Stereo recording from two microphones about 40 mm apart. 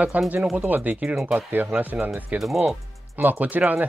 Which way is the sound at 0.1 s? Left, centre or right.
Right.